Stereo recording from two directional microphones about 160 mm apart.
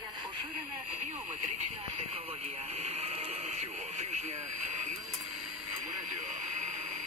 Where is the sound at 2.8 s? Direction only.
45° right (ahead or behind).